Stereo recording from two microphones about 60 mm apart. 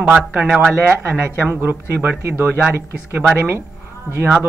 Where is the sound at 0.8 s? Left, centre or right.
Right.